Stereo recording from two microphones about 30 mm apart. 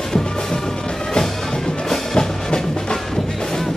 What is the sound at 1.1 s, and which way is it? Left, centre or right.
Music, centre.